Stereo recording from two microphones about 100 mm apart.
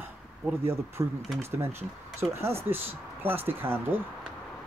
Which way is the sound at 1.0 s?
30° right (ahead or behind).